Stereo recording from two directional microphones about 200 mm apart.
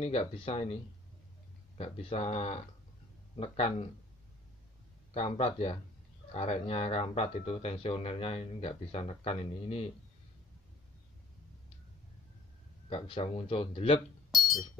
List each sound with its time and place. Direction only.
0.0 s speech: 30° left (ahead or behind)
1.8 s speech: 30° left (ahead or behind)
5.1 s speech: 30° left (ahead or behind)
12.9 s speech: 25° left (ahead or behind)